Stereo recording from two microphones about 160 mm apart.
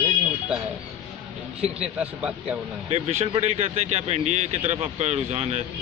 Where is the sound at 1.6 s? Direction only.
5° right (ahead or behind).